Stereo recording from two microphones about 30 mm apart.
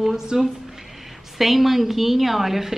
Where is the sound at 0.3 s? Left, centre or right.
Centre.